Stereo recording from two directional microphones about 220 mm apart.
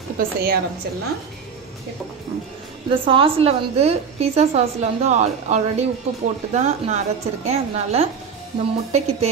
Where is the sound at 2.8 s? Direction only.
25° right (ahead or behind).